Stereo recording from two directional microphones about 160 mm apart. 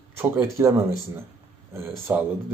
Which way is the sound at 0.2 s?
15° right (ahead or behind).